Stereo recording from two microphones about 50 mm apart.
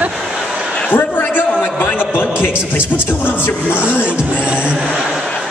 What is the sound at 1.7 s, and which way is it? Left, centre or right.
Speech, left.